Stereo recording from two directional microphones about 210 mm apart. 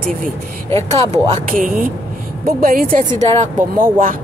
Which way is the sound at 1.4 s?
40° right (ahead or behind).